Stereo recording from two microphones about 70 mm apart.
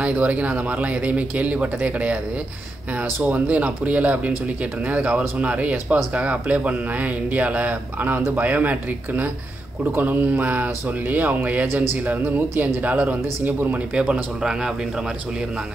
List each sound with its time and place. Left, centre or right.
0.0 s speech: right
13.9 s a man's voice: centre